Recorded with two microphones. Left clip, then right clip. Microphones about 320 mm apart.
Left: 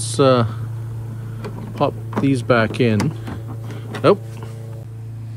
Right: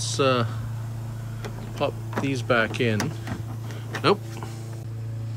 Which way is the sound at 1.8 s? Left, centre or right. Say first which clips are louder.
Left 7 dB; centre.